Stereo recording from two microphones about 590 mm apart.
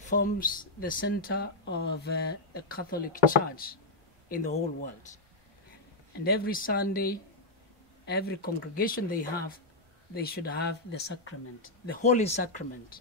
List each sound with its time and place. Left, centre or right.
0.0 s speech: centre
6.2 s speech: centre